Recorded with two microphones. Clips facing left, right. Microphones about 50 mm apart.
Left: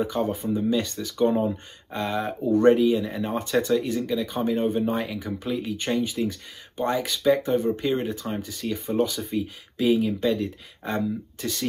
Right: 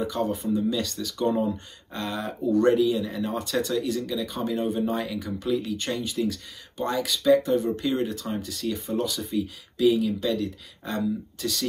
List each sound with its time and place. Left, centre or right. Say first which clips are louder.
0.0 s speech: left 1 dB; left